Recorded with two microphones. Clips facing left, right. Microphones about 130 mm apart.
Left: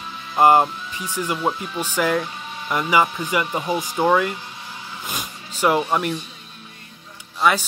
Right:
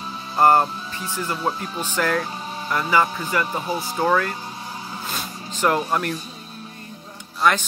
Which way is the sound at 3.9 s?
10° left (ahead or behind).